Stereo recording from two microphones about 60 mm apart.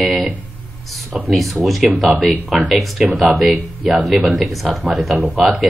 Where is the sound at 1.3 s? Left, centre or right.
Centre.